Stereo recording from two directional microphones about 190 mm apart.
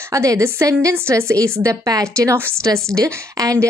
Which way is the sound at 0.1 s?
15° right (ahead or behind).